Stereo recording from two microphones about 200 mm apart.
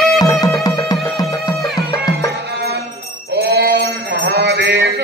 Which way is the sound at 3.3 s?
55° right (ahead or behind).